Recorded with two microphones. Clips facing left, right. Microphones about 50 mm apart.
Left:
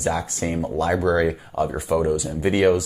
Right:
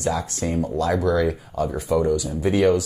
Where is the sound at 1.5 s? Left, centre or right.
Centre.